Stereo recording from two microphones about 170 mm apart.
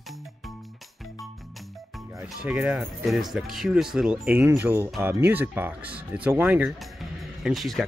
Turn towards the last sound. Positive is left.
turn(degrees=0)  # may be behind; listen again after turning